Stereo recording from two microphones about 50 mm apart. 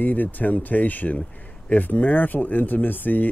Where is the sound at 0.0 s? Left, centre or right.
Left.